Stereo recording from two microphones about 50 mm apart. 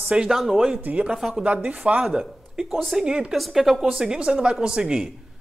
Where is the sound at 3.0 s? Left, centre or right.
Centre.